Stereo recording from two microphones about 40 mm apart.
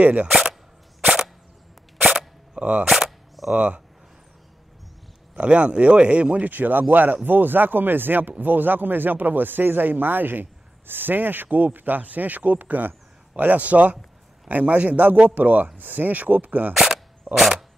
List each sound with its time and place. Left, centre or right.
0.0 s speech: right
2.0 s a sound: centre
2.5 s speech: right
2.9 s cap gun: centre
3.5 s speech: right
5.3 s speech: right
6.5 s speech: right
16.7 s a sound: centre
17.4 s dog: centre